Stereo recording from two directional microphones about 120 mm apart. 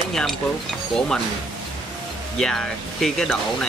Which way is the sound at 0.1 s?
5° left (ahead or behind).